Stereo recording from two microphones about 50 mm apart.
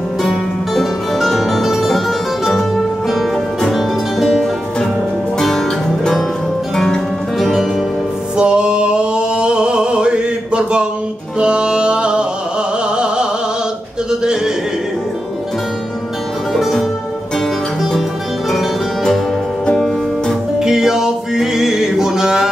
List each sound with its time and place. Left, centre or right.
0.2 s music: centre
7.3 s music: centre
8.4 s music: centre
14.2 s neigh: centre
16.5 s music: centre
20.5 s music: centre